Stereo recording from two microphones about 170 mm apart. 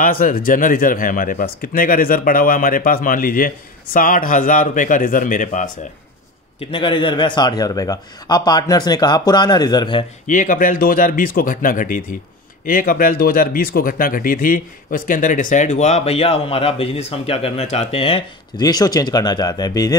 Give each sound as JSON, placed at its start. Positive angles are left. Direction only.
{"t": 0.0, "sound": "speech", "side_deg": 55}
{"t": 6.6, "sound": "a man's voice", "side_deg": 30}
{"t": 10.2, "sound": "speech", "side_deg": 50}